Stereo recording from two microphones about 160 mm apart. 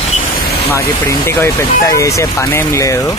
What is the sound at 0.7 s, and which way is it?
Speech, 15° left (ahead or behind).